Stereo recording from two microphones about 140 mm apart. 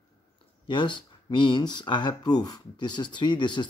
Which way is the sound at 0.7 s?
35° left (ahead or behind).